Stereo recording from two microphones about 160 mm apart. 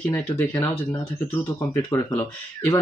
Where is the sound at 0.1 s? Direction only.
10° left (ahead or behind).